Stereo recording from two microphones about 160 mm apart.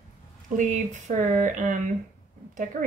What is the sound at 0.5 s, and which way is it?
Speech, 50° right (ahead or behind).